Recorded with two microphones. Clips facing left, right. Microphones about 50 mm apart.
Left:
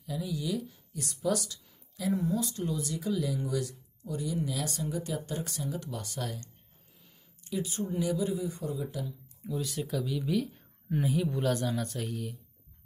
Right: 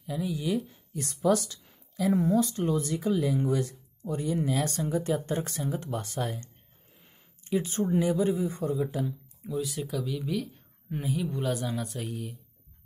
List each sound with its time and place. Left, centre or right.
0.0 s speech: right
2.1 s speech: right
7.0 s a sound: right
8.0 s speech: right
9.5 s speech: centre